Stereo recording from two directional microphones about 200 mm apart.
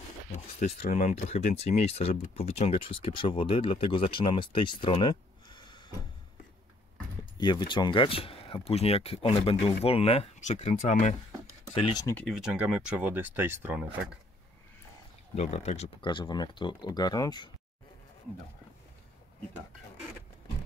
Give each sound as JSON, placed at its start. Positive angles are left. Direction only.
{"t": 0.6, "sound": "speech", "side_deg": 40}
{"t": 7.3, "sound": "speech", "side_deg": 20}
{"t": 12.0, "sound": "speech", "side_deg": 10}
{"t": 12.4, "sound": "speech", "side_deg": -5}
{"t": 15.3, "sound": "speech", "side_deg": 35}